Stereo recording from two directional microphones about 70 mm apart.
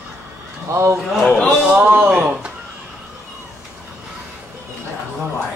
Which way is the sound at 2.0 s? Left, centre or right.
Centre.